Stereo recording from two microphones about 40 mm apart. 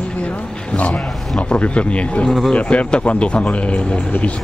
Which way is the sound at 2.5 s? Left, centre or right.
Left.